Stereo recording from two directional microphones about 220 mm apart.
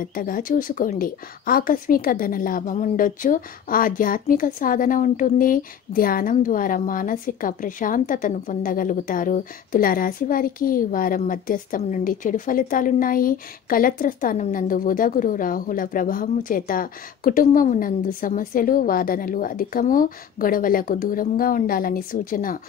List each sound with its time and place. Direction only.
0.0 s a woman's voice: 40° left (ahead or behind)